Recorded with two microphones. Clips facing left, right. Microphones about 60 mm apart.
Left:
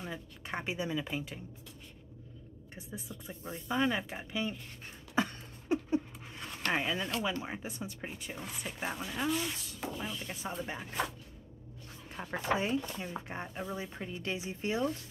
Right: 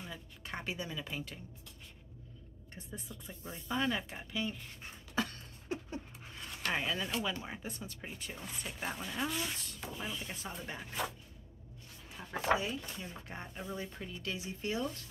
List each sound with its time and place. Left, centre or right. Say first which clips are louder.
0.0 s speech: left 5 dB; left
2.9 s speech: left 3 dB; centre
5.1 s a sound: left 4 dB; left
6.7 s speech: left 2 dB; centre
10.4 s speech: left 4 dB; centre
12.2 s speech: left 7 dB; left
12.5 s speech: left 4 dB; left